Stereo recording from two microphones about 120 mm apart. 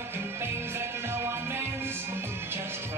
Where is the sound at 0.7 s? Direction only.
20° right (ahead or behind).